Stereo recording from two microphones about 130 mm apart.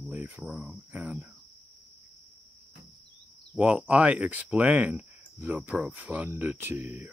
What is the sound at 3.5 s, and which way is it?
Speech, 10° right (ahead or behind).